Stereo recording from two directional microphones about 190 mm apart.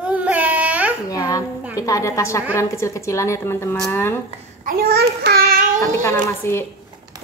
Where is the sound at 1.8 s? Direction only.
15° left (ahead or behind).